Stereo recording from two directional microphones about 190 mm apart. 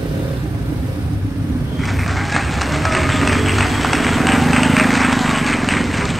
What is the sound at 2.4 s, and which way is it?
Run, centre (ahead or behind).